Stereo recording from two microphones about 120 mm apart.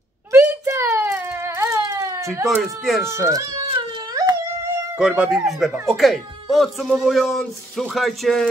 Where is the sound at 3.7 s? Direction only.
45° right (ahead or behind).